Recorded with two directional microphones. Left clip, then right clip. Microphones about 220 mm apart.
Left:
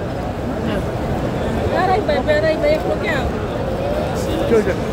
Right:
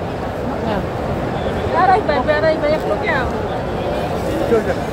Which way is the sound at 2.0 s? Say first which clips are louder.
Right 1 dB; 55° left (ahead or behind).